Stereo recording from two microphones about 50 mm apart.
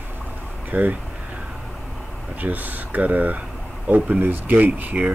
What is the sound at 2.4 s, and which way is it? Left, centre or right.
Speech, right.